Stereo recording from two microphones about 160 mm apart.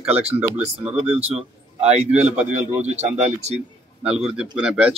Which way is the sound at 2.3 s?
10° right (ahead or behind).